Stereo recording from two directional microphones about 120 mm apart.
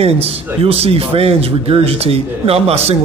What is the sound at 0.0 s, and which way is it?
A man's voice, 55° right (ahead or behind).